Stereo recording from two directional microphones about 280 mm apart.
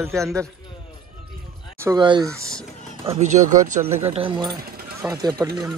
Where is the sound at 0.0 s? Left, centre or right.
Centre.